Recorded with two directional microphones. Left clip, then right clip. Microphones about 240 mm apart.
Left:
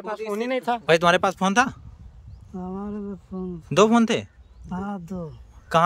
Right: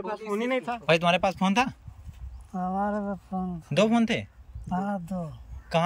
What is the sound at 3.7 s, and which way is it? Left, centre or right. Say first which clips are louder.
Speech: left 6 dB; centre.